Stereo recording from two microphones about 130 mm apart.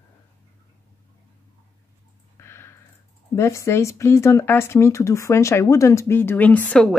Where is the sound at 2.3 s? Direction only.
20° left (ahead or behind).